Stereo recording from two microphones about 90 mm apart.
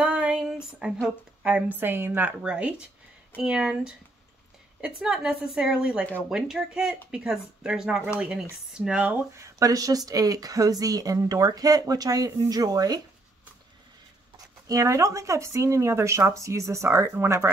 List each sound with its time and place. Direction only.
0.1 s female singing: 10° right (ahead or behind)
1.0 s a woman's voice: 10° right (ahead or behind)
1.8 s a woman's voice: 25° right (ahead or behind)
9.3 s speech: 40° right (ahead or behind)
14.7 s speech: 35° right (ahead or behind)